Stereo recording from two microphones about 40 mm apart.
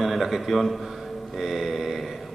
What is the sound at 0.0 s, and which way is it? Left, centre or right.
Speech, centre.